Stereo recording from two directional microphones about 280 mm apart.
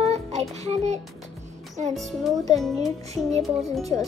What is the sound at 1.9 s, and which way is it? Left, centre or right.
Speech, centre.